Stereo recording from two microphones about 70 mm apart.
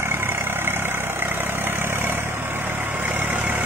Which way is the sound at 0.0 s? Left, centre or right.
Right.